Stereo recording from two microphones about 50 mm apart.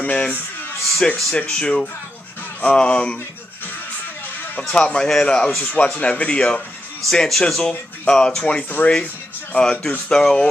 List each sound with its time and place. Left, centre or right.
0.0 s music: left
1.5 s speech: centre
4.7 s speech: centre
5.6 s speech: left
7.1 s speech: centre
8.6 s speech: left
10.1 s speech: centre